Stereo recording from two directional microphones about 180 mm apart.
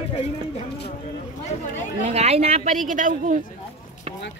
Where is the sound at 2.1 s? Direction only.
35° right (ahead or behind).